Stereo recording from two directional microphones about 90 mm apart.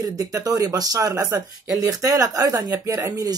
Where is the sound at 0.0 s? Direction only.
40° right (ahead or behind).